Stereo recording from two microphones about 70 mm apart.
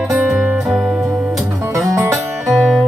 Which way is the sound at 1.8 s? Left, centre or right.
Right.